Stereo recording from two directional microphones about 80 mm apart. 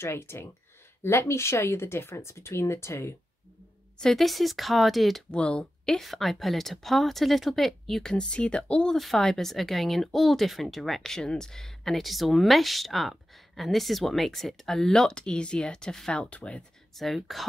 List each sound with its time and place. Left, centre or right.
0.0 s speech: left
4.0 s speech: centre
5.3 s speech: centre
8.9 s speech: centre
16.9 s speech: centre